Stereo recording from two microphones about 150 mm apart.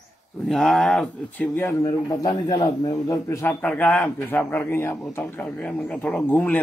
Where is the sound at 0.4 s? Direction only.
Centre (ahead or behind).